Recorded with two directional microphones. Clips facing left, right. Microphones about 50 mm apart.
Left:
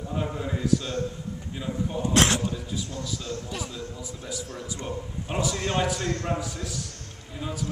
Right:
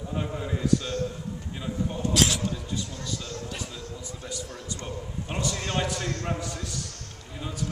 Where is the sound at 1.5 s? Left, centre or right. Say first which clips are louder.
Left 2 dB; centre.